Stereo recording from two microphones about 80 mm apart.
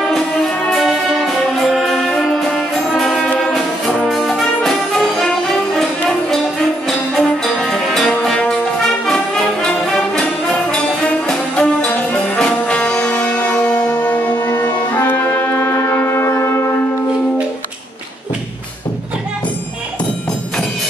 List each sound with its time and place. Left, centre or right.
0.0 s music: centre
3.3 s brass instrument: centre
7.2 s music: centre
8.4 s brass instrument: centre
11.9 s music: left
12.4 s music: centre; by 16.8 s left